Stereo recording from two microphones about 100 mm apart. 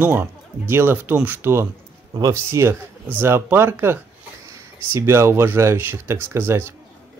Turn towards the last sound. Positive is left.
turn(degrees=-25)  # may be behind; listen again after turning